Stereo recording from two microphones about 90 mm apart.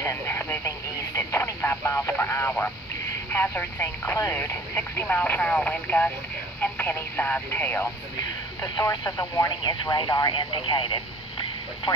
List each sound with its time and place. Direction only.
0.0 s radio: 30° left (ahead or behind)
3.3 s speech: 20° left (ahead or behind)
8.7 s speech: 45° left (ahead or behind)
10.3 s speech: 65° left (ahead or behind)